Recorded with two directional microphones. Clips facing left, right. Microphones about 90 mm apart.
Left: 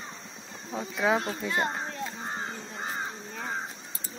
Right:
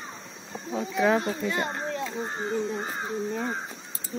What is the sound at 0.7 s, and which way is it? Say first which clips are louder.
Speech: right 3 dB; centre (ahead or behind).